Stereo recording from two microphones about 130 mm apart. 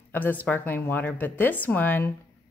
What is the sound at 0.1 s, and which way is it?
Speech, 15° left (ahead or behind).